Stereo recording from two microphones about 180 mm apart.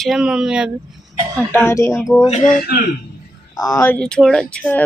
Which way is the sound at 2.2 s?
40° left (ahead or behind).